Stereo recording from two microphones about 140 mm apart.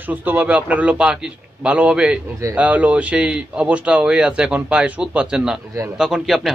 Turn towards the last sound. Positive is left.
turn(degrees=0)  # may be behind; listen again after turning